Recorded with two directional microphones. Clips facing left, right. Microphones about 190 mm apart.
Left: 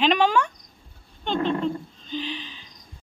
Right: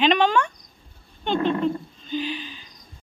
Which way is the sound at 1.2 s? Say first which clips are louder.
Right 2 dB; 5° right (ahead or behind).